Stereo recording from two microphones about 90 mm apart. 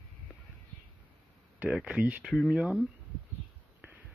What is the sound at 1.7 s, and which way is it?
Speech, 10° right (ahead or behind).